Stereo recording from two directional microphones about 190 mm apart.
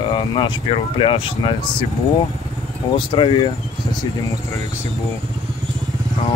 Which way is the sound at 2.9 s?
25° left (ahead or behind).